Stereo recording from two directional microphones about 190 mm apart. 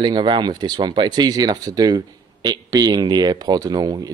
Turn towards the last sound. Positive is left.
turn(degrees=-20)  # may be behind; listen again after turning